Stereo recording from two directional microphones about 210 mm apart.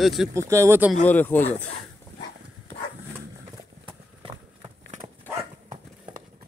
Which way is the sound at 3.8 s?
25° right (ahead or behind).